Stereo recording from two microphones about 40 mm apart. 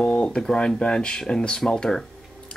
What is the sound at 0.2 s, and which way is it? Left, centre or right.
Speech, left.